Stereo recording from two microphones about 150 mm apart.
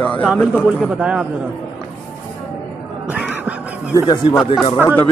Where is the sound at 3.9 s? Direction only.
30° left (ahead or behind).